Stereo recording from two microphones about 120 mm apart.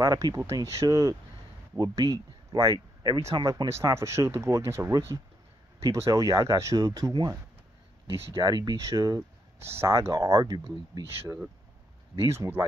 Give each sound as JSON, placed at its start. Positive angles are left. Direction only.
{"t": 0.0, "sound": "speech", "side_deg": -30}
{"t": 3.7, "sound": "speech", "side_deg": -25}
{"t": 8.4, "sound": "speech", "side_deg": -35}
{"t": 12.3, "sound": "speech", "side_deg": -20}